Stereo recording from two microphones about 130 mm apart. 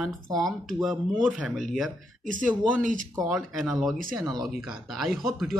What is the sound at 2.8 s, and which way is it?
Speech, 90° right.